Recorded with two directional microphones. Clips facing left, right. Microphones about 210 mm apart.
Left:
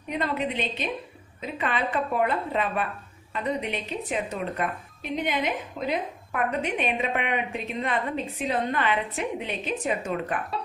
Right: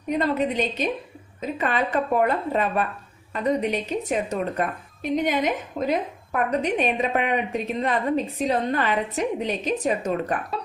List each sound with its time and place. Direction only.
0.1 s a woman's voice: 40° right (ahead or behind)